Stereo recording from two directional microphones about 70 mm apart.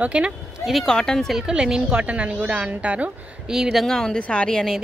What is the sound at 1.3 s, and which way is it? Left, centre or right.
A woman's voice, centre.